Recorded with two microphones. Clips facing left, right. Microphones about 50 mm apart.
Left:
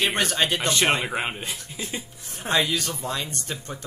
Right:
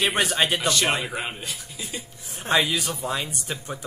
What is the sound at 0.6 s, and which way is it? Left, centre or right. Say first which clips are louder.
Speech: left 1 dB; left.